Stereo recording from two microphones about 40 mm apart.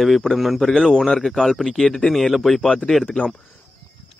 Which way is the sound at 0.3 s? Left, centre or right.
Centre.